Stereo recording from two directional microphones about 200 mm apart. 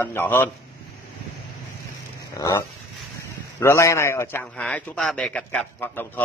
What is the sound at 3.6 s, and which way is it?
Speech, 15° left (ahead or behind).